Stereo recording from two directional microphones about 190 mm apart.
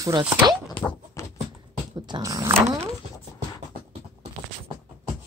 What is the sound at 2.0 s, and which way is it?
Speech, 20° right (ahead or behind).